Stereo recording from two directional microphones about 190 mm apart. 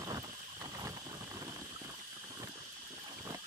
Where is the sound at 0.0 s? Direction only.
20° right (ahead or behind).